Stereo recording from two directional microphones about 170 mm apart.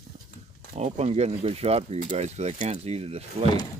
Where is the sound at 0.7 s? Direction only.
40° right (ahead or behind).